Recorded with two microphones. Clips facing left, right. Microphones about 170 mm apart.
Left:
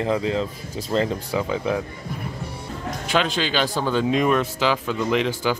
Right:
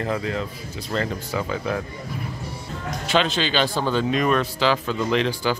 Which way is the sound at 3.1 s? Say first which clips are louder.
Right 1 dB; 10° left (ahead or behind).